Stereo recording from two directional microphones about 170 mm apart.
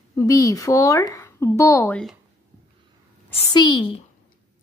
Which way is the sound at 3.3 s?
25° left (ahead or behind).